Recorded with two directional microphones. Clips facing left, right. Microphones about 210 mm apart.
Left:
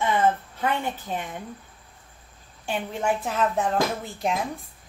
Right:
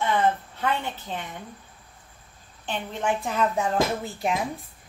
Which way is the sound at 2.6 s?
10° left (ahead or behind).